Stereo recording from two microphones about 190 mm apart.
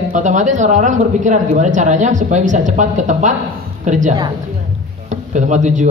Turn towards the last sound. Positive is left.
turn(degrees=-40)  # may be behind; listen again after turning